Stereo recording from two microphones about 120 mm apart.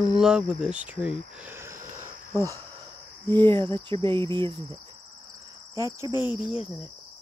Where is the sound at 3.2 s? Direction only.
40° right (ahead or behind).